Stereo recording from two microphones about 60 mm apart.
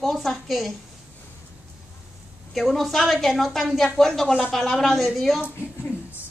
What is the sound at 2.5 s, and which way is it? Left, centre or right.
A woman's voice, centre.